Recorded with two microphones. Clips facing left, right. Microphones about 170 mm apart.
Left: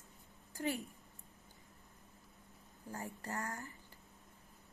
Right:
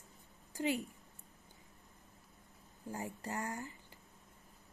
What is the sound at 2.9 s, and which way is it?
Speech, 15° right (ahead or behind).